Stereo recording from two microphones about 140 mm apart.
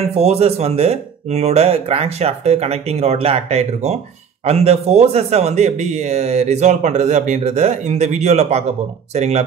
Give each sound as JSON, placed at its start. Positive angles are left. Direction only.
{"t": 0.2, "sound": "a man's voice", "side_deg": -50}